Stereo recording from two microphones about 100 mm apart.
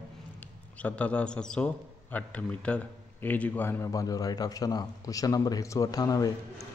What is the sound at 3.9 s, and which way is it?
Speech, 35° left (ahead or behind).